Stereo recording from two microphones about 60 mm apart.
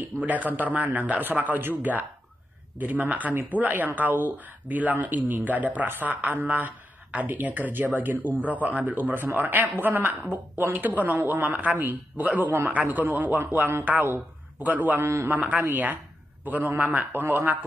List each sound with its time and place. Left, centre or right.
0.2 s a man's voice: right
15.0 s a man's voice: right
15.2 s a man's voice: right